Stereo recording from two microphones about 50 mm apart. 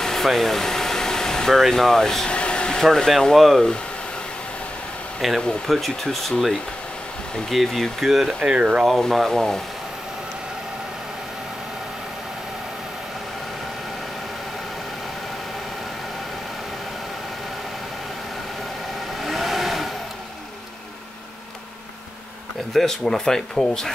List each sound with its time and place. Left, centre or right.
0.0 s air conditioning: centre
1.7 s speech: centre
2.2 s a sound: left
2.8 s speech: centre
5.2 s speech: centre
7.5 s speech: centre
8.4 s speech: right
9.0 s speech: centre
19.1 s vehicle: centre
22.7 s speech: centre